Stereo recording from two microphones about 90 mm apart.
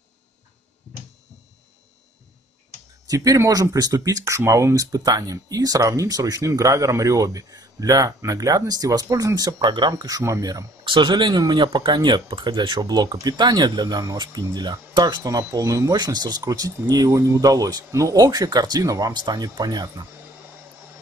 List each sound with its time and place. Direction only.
3.1 s speech: 40° right (ahead or behind)
10.9 s speech: 60° right (ahead or behind)